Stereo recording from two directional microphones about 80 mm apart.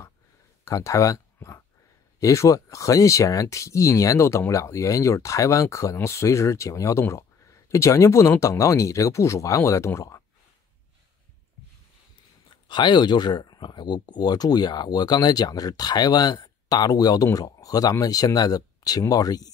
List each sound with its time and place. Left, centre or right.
0.7 s speech: left
12.6 s speech: left